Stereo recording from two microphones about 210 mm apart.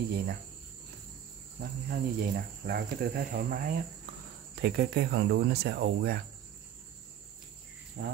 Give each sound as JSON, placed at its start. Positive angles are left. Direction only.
{"t": 1.6, "sound": "speech", "side_deg": -45}
{"t": 8.0, "sound": "speech", "side_deg": -45}